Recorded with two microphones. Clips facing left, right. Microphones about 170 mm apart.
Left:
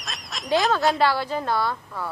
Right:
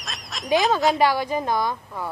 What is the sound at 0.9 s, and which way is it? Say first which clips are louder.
A woman's voice: right 2 dB; 15° right (ahead or behind).